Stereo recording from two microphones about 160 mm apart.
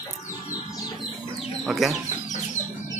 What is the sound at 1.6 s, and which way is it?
Speech, centre (ahead or behind).